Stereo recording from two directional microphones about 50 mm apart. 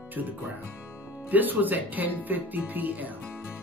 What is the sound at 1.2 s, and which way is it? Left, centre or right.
Speech, right.